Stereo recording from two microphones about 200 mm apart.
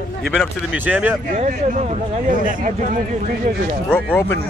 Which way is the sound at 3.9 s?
10° left (ahead or behind).